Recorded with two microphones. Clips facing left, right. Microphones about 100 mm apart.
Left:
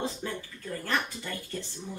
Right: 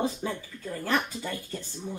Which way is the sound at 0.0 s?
15° right (ahead or behind).